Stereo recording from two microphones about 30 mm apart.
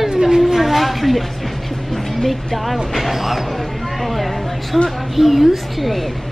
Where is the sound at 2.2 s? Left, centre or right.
Centre.